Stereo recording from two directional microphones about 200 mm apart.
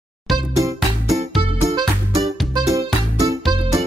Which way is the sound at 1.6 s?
15° right (ahead or behind).